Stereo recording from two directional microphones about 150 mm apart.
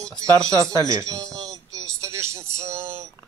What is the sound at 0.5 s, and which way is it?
Speech, 25° left (ahead or behind).